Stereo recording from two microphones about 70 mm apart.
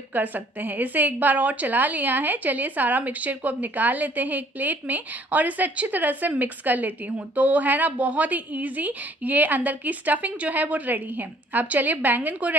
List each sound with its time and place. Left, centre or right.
0.1 s a woman's voice: right